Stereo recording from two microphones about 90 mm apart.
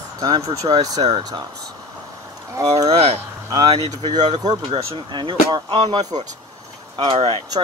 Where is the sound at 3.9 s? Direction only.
45° right (ahead or behind).